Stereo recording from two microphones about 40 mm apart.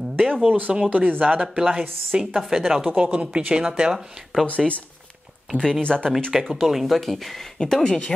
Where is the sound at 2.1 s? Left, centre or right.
Centre.